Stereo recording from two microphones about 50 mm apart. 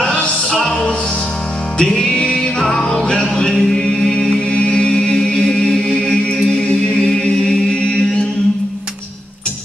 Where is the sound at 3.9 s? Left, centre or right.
Centre.